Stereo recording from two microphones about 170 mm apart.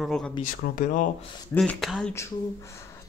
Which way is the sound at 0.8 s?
50° left (ahead or behind).